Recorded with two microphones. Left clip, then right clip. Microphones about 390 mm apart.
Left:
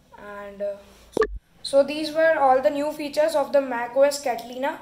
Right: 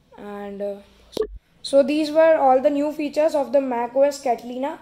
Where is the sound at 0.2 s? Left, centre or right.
Right.